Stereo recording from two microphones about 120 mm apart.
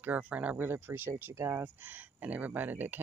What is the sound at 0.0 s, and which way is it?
Speech, 15° right (ahead or behind).